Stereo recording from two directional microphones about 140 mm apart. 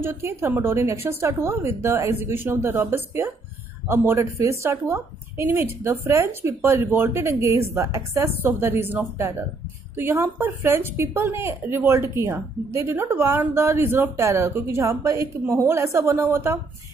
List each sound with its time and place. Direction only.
0.0 s a woman's voice: 15° right (ahead or behind)